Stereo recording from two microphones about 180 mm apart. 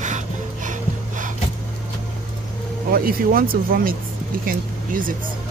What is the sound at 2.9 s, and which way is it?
Speech, 55° right (ahead or behind).